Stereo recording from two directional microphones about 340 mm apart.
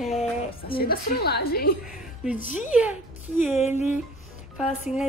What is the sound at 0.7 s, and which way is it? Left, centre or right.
A woman's voice, left.